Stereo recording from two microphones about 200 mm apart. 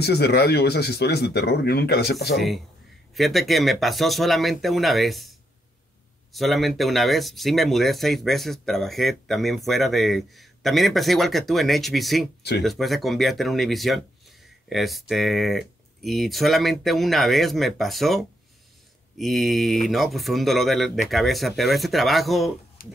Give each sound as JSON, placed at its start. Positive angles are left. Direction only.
{"t": 0.0, "sound": "speech", "side_deg": 55}
{"t": 2.3, "sound": "speech", "side_deg": 0}
{"t": 6.3, "sound": "speech", "side_deg": 0}